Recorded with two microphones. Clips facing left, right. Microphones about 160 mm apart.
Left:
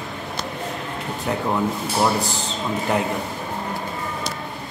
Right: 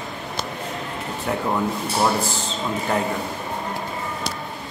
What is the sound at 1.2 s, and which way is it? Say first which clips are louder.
Speech: left 1 dB; centre (ahead or behind).